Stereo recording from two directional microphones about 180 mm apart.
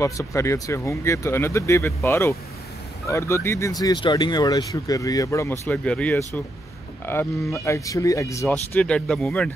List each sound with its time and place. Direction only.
0.0 s speech: 15° left (ahead or behind)
8.7 s speech: 5° left (ahead or behind)